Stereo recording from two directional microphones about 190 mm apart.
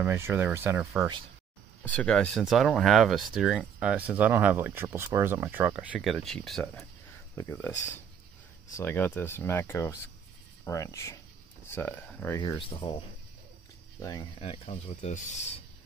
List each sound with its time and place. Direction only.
0.0 s speech: 10° right (ahead or behind)
1.8 s speech: 5° left (ahead or behind)
8.7 s speech: 10° left (ahead or behind)
12.4 s speech: 25° left (ahead or behind)
14.4 s speech: 30° left (ahead or behind)